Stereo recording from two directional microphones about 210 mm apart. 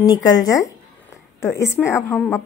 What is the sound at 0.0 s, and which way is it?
Speech, 20° left (ahead or behind).